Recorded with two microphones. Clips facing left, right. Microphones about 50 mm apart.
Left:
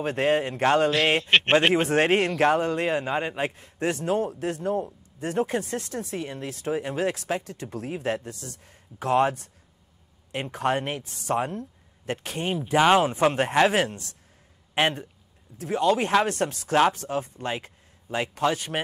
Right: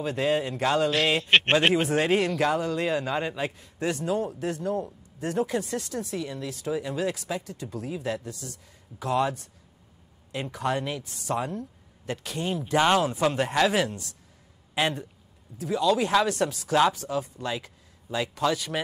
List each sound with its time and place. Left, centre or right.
0.0 s speech: left
1.0 s a man's voice: left
1.7 s speech: left
12.5 s speech: centre
13.0 s speech: left